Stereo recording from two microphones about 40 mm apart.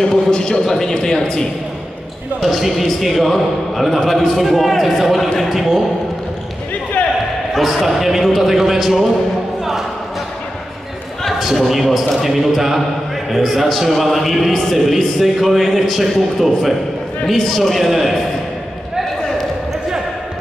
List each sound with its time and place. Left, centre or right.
0.0 s a man's voice: centre
2.4 s a man's voice: centre
7.0 s basketball bounce: left
7.5 s a man's voice: centre
11.2 s a man's voice: centre